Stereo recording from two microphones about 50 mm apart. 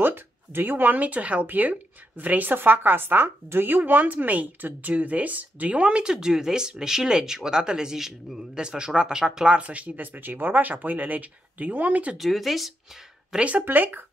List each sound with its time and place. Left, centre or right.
0.0 s speech: right; by 9.5 s centre
9.5 s speech: right
12.2 s speech: centre
13.4 s speech: right
13.7 s speech: right